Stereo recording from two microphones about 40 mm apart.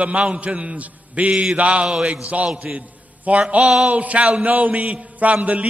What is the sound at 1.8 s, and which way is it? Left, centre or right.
Speech, centre.